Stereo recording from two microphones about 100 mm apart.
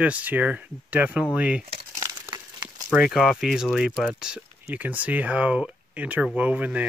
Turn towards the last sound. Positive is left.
turn(degrees=-15)  # may be behind; listen again after turning